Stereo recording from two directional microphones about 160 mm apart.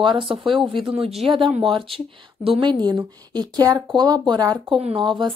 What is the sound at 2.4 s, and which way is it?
A woman's voice, 30° right (ahead or behind).